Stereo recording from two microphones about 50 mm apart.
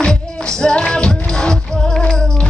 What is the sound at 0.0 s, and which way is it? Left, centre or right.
Music, centre.